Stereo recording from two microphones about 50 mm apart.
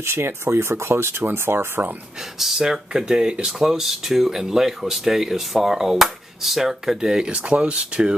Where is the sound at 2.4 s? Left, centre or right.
Centre.